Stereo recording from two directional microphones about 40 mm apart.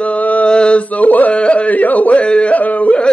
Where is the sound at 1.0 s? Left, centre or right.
Left.